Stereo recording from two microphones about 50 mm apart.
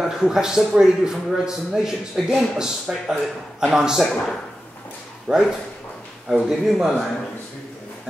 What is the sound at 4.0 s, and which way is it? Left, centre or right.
Speech, centre.